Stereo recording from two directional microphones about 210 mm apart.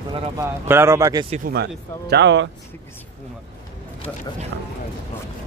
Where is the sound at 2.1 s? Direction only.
60° right (ahead or behind).